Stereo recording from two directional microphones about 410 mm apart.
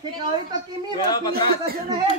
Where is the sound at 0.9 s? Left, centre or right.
Centre.